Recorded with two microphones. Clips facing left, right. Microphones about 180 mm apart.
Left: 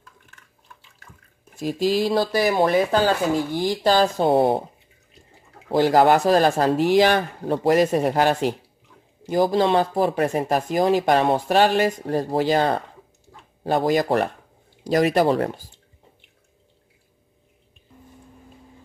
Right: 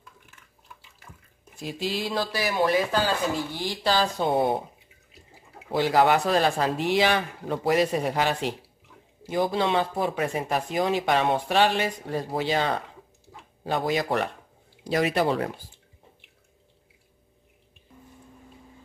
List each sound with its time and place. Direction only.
1.6 s speech: 40° left (ahead or behind)
5.1 s water: 5° right (ahead or behind)
5.7 s speech: 45° left (ahead or behind)